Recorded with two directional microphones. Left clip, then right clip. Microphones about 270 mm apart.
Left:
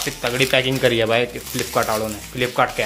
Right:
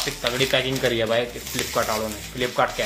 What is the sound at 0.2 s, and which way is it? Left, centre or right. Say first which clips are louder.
Speech: left 4 dB; left.